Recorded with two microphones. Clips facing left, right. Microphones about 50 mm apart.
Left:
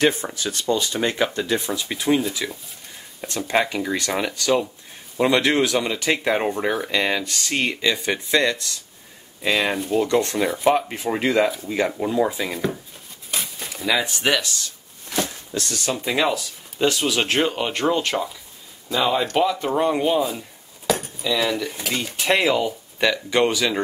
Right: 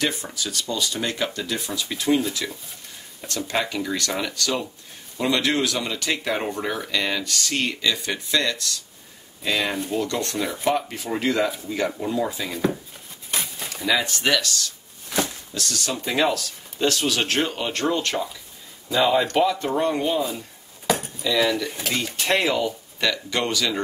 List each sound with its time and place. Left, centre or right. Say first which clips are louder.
0.0 s speech: left 6 dB; left; by 2.5 s centre
3.2 s speech: left 4 dB; left
13.3 s a sound: even; centre
13.8 s speech: left 1 dB; centre
16.1 s speech: even; centre
18.9 s speech: right 1 dB; centre
19.6 s speech: left 2 dB; centre
20.8 s keys jangling: left 1 dB; centre
21.2 s speech: right 1 dB; centre; by 23.8 s left